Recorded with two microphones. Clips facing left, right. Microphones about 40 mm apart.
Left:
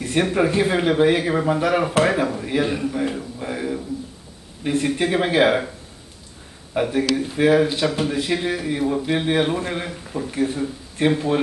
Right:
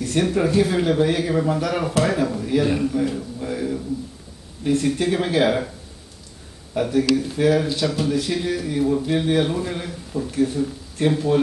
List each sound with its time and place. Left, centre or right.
0.0 s speech: left
6.7 s speech: left